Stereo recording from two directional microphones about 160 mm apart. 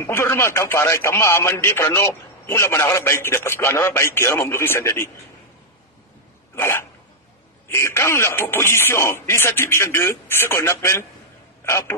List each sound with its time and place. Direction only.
0.0 s speech: 15° left (ahead or behind)
6.5 s speech: 15° left (ahead or behind)